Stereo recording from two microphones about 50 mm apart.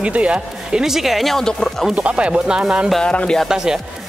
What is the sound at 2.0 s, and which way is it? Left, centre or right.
Speech, right.